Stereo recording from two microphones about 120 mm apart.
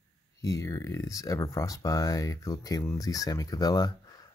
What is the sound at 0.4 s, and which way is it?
Speech, 25° left (ahead or behind).